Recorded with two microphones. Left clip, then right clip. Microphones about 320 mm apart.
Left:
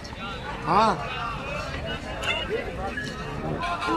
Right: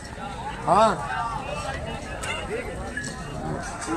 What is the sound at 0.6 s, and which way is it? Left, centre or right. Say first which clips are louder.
Speech: right 2 dB; centre.